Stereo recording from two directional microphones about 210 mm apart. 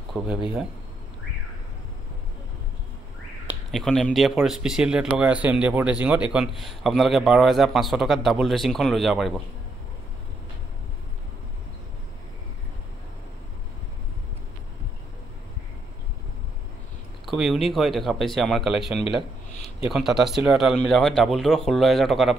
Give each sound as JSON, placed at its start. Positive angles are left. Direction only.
{"t": 0.2, "sound": "speech", "side_deg": -5}
{"t": 3.4, "sound": "speech", "side_deg": 0}
{"t": 17.3, "sound": "speech", "side_deg": 0}